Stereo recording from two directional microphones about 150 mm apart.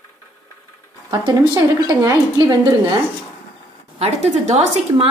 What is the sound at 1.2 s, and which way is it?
Speech, 25° right (ahead or behind).